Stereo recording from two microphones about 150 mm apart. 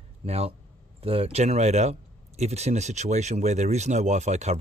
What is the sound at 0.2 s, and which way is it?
Speech, 40° right (ahead or behind).